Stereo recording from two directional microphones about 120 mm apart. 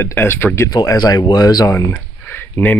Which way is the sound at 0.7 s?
35° left (ahead or behind).